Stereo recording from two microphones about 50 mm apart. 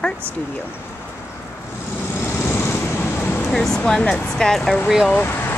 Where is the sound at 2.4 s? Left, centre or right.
Left.